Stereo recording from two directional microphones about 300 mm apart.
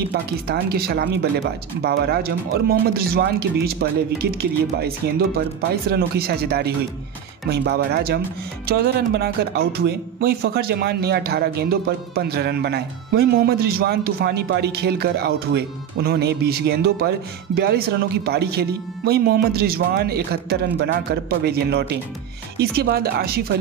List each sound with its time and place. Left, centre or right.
0.1 s speech: right